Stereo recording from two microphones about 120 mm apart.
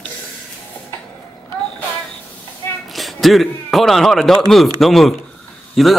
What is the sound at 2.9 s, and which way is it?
Speech, centre (ahead or behind).